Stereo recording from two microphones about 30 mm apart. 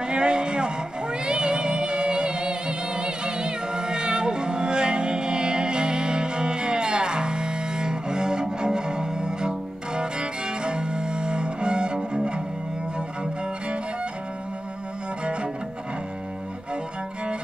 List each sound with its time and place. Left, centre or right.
0.0 s a sound: right
1.2 s music: right
10.6 s cello: right